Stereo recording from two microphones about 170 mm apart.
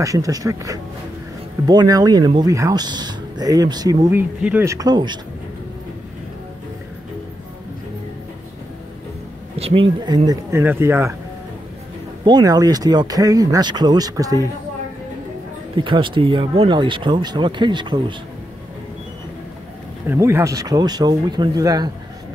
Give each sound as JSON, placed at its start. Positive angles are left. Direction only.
{"t": 0.0, "sound": "speech", "side_deg": -20}
{"t": 9.6, "sound": "a sound", "side_deg": -35}
{"t": 10.0, "sound": "speech", "side_deg": -25}
{"t": 12.3, "sound": "speech", "side_deg": -25}
{"t": 15.7, "sound": "speech", "side_deg": -30}
{"t": 20.1, "sound": "speech", "side_deg": -15}